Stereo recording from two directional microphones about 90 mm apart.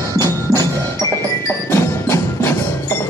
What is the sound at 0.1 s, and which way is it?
Music, 40° right (ahead or behind).